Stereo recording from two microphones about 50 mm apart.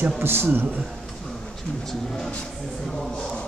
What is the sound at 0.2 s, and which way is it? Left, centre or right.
Speech, right.